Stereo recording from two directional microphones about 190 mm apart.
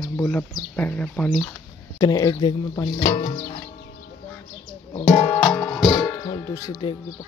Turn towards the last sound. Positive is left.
turn(degrees=20)  # may be behind; listen again after turning